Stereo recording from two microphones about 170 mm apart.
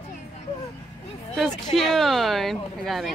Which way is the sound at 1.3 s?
Centre (ahead or behind).